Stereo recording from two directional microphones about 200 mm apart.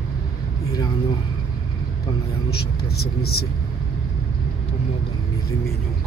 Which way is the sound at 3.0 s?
50° left (ahead or behind).